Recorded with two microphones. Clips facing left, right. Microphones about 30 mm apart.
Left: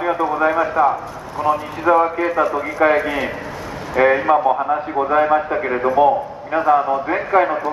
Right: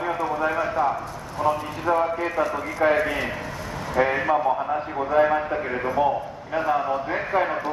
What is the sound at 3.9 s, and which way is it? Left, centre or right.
A man's voice, left.